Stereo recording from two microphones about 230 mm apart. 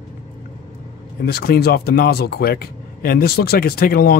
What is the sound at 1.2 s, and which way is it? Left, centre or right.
Speech, left.